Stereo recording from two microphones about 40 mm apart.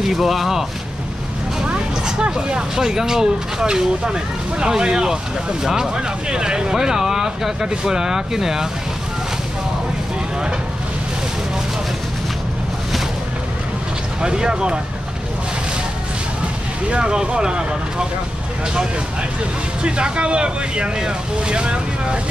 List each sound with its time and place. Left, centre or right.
0.0 s speech: centre
2.0 s speech: centre
14.2 s speech: centre
16.9 s speech: right
19.8 s speech: right